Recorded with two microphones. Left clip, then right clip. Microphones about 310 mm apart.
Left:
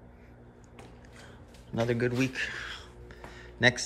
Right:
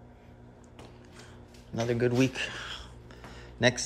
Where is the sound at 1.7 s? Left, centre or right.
Centre.